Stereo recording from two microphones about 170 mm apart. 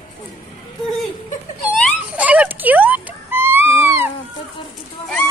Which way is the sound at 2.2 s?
10° right (ahead or behind).